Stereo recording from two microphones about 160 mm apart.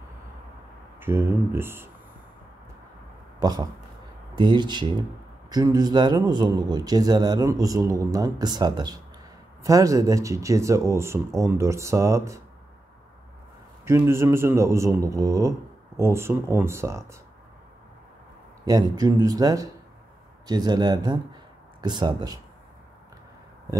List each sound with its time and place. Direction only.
0.9 s a man's voice: 15° right (ahead or behind)
3.3 s a man's voice: 25° right (ahead or behind)
13.8 s a man's voice: 15° right (ahead or behind)
18.7 s a man's voice: 25° right (ahead or behind)